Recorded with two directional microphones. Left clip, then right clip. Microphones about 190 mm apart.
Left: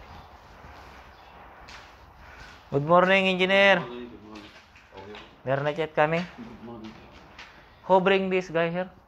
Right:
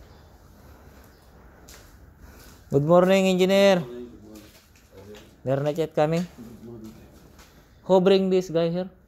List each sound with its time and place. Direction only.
2.9 s speech: 80° right
5.4 s speech: 70° right (ahead or behind)
7.9 s speech: 75° right (ahead or behind)